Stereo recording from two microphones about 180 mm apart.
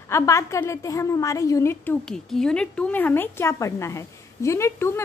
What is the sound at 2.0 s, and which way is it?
A woman's voice, 5° left (ahead or behind).